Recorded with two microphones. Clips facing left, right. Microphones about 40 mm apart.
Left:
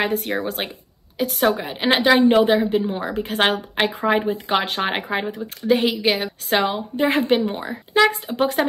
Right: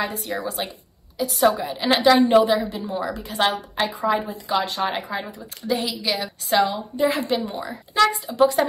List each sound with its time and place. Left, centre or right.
0.0 s a woman's voice: left
1.5 s a woman's voice: left